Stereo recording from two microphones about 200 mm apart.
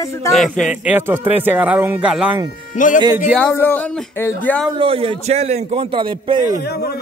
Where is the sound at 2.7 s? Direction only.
40° left (ahead or behind).